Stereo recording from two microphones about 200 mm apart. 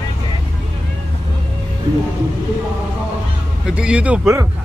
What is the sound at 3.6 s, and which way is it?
Speech, 5° right (ahead or behind).